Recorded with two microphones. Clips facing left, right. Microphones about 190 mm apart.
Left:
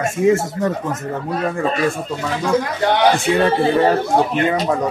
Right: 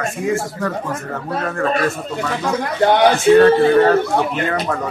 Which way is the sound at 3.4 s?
15° left (ahead or behind).